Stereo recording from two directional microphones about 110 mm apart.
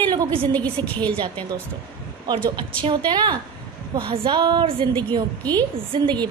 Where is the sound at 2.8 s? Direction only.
45° right (ahead or behind).